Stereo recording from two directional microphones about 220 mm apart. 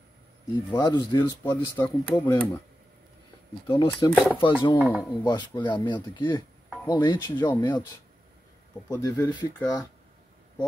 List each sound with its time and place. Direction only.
0.7 s speech: 20° left (ahead or behind)
1.5 s speech: 10° left (ahead or behind)
3.6 s speech: 15° left (ahead or behind)
4.8 s speech: 5° right (ahead or behind)
5.1 s speech: 20° left (ahead or behind)
8.8 s speech: 10° left (ahead or behind)
9.1 s speech: 20° left (ahead or behind)